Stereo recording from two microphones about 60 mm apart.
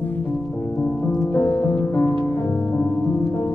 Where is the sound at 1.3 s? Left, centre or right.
Left.